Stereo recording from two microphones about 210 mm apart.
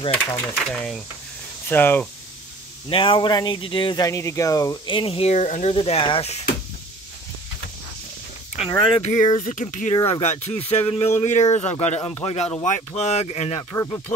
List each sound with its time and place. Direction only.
0.1 s speech: 5° left (ahead or behind)
2.9 s speech: 25° left (ahead or behind)
8.5 s speech: 30° left (ahead or behind)
9.9 s speech: 20° left (ahead or behind)
10.2 s speech: 30° left (ahead or behind)
13.7 s speech: 15° left (ahead or behind)